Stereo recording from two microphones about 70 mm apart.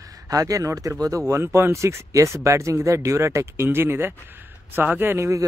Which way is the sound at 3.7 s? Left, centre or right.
Right.